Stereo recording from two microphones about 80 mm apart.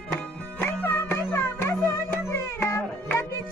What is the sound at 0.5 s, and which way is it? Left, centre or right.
Music, left.